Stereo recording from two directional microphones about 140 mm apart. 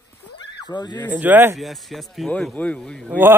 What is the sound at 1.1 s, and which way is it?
Speech, 15° right (ahead or behind).